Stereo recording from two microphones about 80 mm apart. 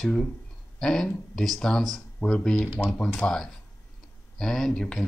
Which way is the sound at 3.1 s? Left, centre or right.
Centre.